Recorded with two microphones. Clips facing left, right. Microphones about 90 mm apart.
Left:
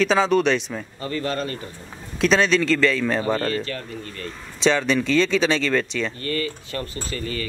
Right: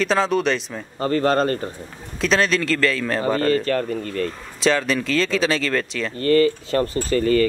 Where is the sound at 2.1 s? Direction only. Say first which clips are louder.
Left 1 dB; centre (ahead or behind).